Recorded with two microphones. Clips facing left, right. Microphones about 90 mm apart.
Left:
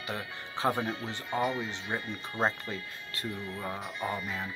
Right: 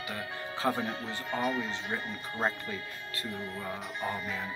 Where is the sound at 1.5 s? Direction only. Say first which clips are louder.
Right 1 dB; 20° left (ahead or behind).